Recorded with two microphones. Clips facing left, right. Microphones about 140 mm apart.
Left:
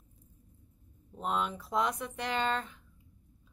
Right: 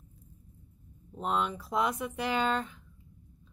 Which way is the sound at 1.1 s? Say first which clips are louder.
Right 2 dB; centre (ahead or behind).